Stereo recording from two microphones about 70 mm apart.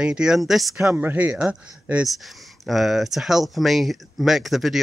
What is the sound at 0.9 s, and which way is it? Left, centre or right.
Speech, right.